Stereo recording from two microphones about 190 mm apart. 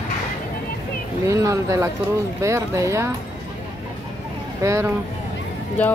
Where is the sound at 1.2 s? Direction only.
15° right (ahead or behind).